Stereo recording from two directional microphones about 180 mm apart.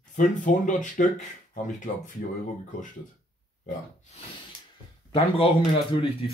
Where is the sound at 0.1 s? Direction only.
45° left (ahead or behind).